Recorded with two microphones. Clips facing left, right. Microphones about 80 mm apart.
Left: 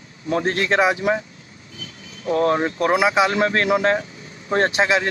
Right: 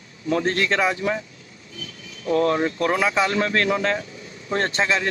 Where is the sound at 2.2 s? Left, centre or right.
Left.